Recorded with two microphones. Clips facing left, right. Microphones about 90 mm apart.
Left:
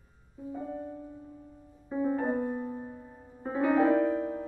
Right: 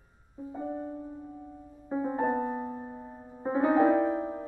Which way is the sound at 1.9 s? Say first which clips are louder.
Even; 30° right (ahead or behind).